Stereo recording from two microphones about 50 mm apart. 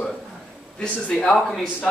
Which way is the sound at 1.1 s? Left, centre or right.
Centre.